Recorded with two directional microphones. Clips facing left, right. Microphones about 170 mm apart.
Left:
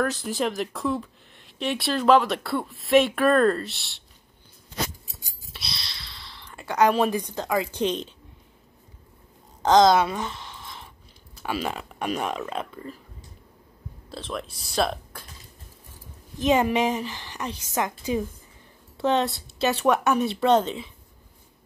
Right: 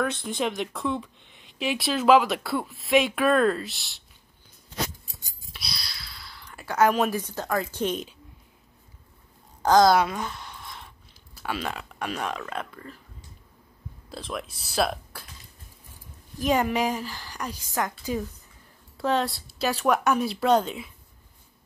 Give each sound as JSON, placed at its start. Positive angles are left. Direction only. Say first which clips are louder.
{"t": 0.0, "sound": "speech", "louder": "left 2 dB", "side_deg": 0}
{"t": 5.0, "sound": "a sound", "louder": "left 2 dB", "side_deg": 0}
{"t": 5.9, "sound": "sigh", "louder": "left 1 dB", "side_deg": 0}
{"t": 6.6, "sound": "a woman's voice", "louder": "left 1 dB", "side_deg": 15}
{"t": 9.6, "sound": "speech", "louder": "left 1 dB", "side_deg": 20}
{"t": 10.0, "sound": "a sound", "louder": "left 2 dB", "side_deg": 0}
{"t": 11.4, "sound": "speech", "louder": "left 2 dB", "side_deg": 5}
{"t": 12.0, "sound": "speech", "louder": "left 4 dB", "side_deg": 15}
{"t": 14.1, "sound": "speech", "louder": "left 1 dB", "side_deg": 0}
{"t": 16.3, "sound": "speech", "louder": "left 3 dB", "side_deg": 20}
{"t": 19.3, "sound": "speech", "louder": "left 3 dB", "side_deg": 0}